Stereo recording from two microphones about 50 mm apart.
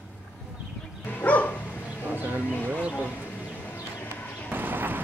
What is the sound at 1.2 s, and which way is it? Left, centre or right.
Dog, left.